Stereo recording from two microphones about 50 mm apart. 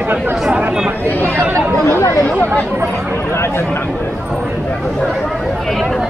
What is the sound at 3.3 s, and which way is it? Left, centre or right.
Speech, left.